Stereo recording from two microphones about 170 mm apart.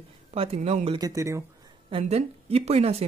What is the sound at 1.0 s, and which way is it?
Speech, 20° right (ahead or behind).